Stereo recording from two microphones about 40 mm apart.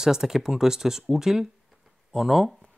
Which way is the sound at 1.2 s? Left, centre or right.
Centre.